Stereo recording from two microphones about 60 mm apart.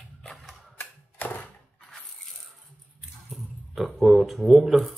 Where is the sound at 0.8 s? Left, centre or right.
Left.